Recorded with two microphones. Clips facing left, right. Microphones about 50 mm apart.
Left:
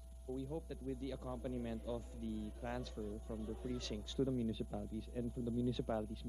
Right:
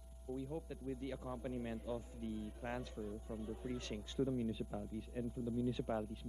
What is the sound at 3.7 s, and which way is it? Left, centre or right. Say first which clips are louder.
A man's voice: even; right.